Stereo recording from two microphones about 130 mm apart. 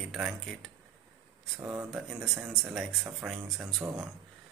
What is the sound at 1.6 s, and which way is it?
Speech, 20° right (ahead or behind).